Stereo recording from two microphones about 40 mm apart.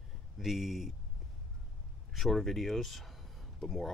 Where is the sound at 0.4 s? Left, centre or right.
Centre.